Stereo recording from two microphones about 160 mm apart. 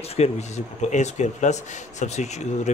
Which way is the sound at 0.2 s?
45° left (ahead or behind).